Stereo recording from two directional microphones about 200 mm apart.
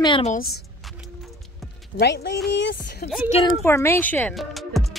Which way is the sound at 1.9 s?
60° left (ahead or behind).